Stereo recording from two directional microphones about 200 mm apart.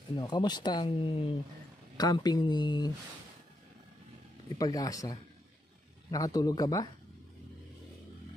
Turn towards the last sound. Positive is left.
turn(degrees=20)  # may be behind; listen again after turning